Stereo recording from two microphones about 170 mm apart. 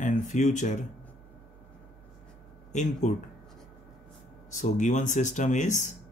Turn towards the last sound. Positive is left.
turn(degrees=45)  # may be behind; listen again after turning